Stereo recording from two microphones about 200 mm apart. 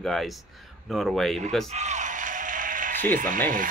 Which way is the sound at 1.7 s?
35° right (ahead or behind).